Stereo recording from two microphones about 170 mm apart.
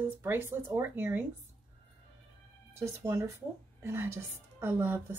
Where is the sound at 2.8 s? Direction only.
15° right (ahead or behind).